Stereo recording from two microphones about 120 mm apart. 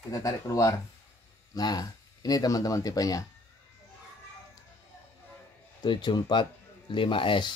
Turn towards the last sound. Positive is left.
turn(degrees=45)  # may be behind; listen again after turning